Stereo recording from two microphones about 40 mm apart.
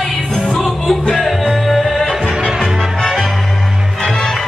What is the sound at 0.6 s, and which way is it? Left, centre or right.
Music, centre.